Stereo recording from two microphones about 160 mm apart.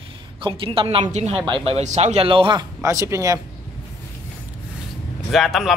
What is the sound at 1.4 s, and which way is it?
A man's voice, 35° right (ahead or behind).